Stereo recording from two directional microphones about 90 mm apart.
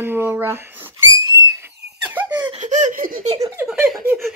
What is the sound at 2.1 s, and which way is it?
Laughter, 20° right (ahead or behind).